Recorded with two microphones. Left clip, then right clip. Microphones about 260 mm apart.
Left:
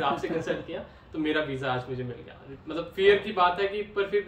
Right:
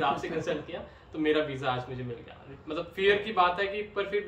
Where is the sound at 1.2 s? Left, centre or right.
Centre.